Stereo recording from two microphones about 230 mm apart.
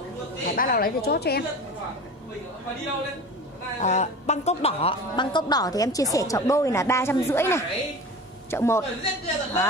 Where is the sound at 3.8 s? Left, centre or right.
Left.